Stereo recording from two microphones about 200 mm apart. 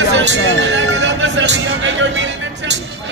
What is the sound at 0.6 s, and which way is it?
Music, 65° right (ahead or behind).